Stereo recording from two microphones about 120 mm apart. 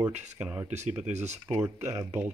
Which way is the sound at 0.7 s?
70° right (ahead or behind).